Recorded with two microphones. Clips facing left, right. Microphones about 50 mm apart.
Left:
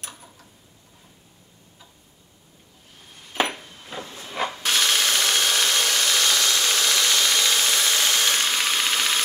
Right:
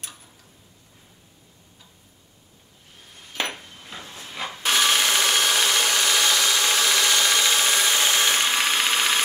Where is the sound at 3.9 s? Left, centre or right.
Left.